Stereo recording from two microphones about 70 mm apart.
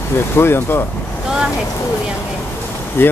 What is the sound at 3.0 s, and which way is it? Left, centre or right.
Speech, left.